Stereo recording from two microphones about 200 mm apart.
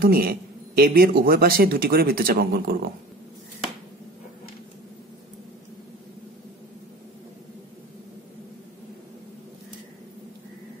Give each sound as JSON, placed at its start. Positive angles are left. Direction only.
{"t": 0.0, "sound": "a man's voice", "side_deg": -50}